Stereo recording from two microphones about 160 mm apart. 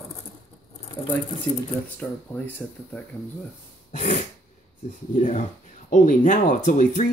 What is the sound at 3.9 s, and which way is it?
Throat clearing, 50° left (ahead or behind).